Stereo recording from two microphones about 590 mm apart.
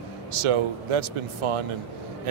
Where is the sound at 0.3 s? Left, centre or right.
Right.